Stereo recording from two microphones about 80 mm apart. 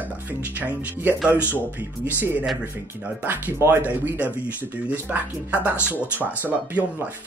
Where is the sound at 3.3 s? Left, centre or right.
Right.